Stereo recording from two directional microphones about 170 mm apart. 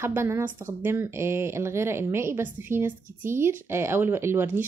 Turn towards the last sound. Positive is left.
turn(degrees=-15)  # may be behind; listen again after turning